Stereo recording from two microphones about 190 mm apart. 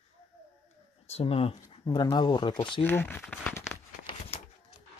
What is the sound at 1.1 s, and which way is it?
Speech, 35° left (ahead or behind).